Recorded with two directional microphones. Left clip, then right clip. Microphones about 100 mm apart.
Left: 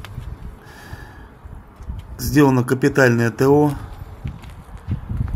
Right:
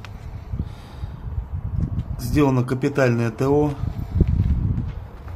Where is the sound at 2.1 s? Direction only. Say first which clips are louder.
Left 5 dB; 35° left (ahead or behind).